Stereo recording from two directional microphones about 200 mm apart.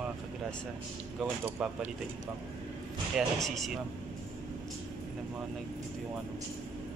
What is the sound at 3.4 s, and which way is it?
Speech, centre (ahead or behind).